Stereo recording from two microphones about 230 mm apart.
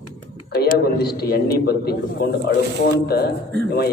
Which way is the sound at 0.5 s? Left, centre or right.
Left.